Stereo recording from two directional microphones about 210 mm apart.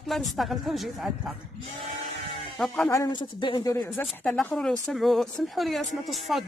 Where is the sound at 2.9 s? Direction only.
20° left (ahead or behind).